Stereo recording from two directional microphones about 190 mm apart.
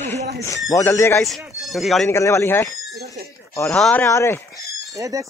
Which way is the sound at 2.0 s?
15° left (ahead or behind).